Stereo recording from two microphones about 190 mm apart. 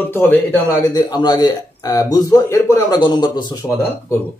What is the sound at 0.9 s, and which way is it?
Speech, 20° left (ahead or behind).